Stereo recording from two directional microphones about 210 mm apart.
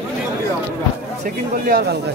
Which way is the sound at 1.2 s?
45° right (ahead or behind).